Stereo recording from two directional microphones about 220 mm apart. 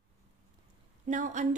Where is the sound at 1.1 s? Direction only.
35° right (ahead or behind).